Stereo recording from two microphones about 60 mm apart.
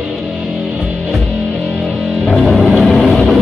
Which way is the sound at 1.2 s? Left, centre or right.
Centre.